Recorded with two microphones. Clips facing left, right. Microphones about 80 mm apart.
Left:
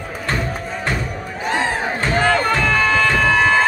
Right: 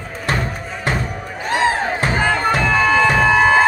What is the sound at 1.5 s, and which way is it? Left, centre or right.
Music, centre.